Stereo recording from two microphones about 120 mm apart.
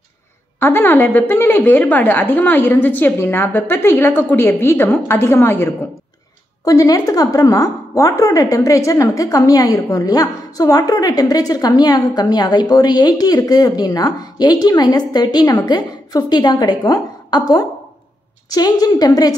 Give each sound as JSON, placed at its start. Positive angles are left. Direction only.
{"t": 0.6, "sound": "a woman's voice", "side_deg": 20}